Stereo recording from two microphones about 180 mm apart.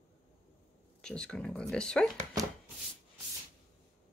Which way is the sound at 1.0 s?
5° left (ahead or behind).